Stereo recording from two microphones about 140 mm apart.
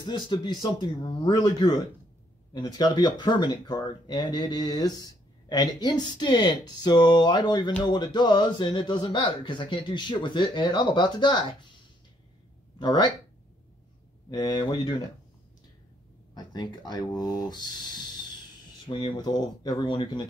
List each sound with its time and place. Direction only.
0.0 s speech: 35° left (ahead or behind)
12.7 s speech: 30° left (ahead or behind)
14.3 s speech: 30° left (ahead or behind)
16.3 s speech: 30° left (ahead or behind)